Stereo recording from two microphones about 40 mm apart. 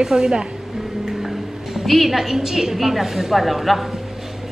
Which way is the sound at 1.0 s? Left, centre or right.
Centre.